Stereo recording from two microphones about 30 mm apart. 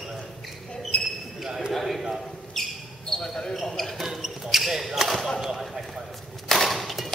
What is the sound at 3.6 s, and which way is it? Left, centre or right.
Basketball bounce, centre.